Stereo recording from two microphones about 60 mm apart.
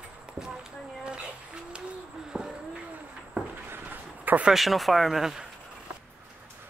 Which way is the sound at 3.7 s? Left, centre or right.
Right.